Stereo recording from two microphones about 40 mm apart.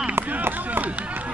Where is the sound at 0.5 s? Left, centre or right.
Right.